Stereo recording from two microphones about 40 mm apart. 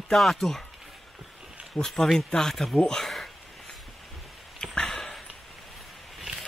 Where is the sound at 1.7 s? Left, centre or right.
Centre.